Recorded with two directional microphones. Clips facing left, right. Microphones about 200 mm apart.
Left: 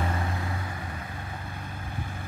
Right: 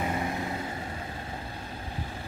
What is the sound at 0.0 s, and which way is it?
Vehicle, 20° right (ahead or behind).